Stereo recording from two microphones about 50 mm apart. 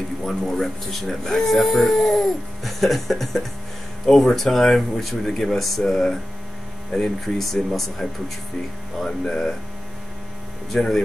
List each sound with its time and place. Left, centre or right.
0.2 s speech: centre
8.0 s speech: centre
9.0 s speech: centre
10.7 s speech: centre